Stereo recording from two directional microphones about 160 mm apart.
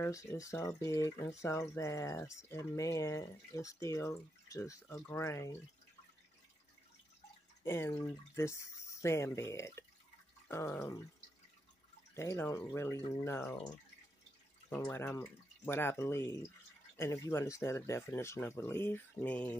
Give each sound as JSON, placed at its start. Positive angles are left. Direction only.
{"t": 0.0, "sound": "speech", "side_deg": 15}
{"t": 7.6, "sound": "speech", "side_deg": 15}
{"t": 12.1, "sound": "speech", "side_deg": 15}
{"t": 14.9, "sound": "speech", "side_deg": 15}